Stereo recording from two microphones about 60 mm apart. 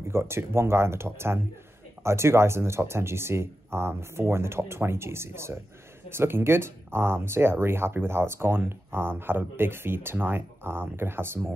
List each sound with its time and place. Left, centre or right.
0.1 s speech: right